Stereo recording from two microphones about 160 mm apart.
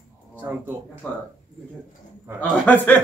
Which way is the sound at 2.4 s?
10° left (ahead or behind).